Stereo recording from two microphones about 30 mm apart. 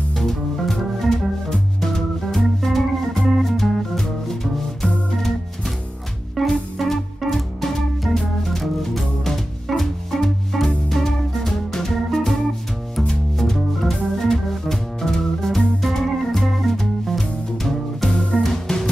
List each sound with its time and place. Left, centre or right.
0.1 s music: centre
1.5 s organ: centre
6.4 s music: centre
8.1 s organ: centre
9.7 s music: centre
13.4 s music: centre
14.1 s organ: centre
16.3 s music: centre
18.1 s music: left
18.4 s music: centre